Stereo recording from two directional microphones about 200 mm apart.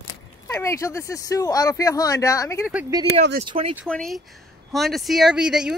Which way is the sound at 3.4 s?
30° right (ahead or behind).